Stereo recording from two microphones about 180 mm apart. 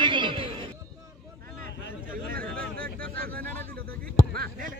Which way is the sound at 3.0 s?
55° right (ahead or behind).